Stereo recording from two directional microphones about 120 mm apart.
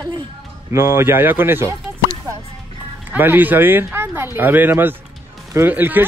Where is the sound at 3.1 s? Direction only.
15° right (ahead or behind).